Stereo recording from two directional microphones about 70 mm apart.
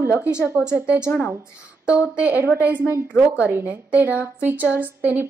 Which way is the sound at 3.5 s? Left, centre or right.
Right.